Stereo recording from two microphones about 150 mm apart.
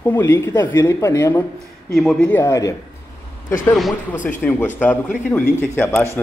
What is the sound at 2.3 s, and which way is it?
Speech, 20° left (ahead or behind).